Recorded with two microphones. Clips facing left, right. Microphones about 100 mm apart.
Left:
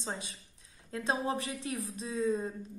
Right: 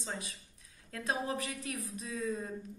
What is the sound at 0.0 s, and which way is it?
Speech, 25° left (ahead or behind).